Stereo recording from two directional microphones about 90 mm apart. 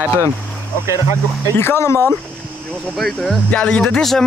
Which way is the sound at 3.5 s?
10° left (ahead or behind).